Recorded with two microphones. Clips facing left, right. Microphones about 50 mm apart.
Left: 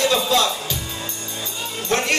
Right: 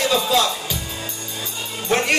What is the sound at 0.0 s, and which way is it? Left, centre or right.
Music, centre.